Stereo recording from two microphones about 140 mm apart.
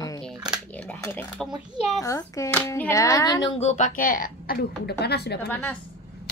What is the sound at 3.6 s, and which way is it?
Speech, 50° left (ahead or behind).